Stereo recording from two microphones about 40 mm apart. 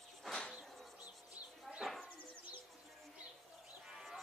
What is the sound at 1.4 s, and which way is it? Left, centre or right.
Bird, right.